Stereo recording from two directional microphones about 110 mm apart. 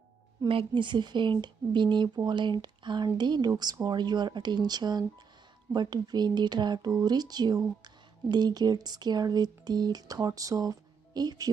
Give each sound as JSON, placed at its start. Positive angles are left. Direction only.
{"t": 0.5, "sound": "speech", "side_deg": -50}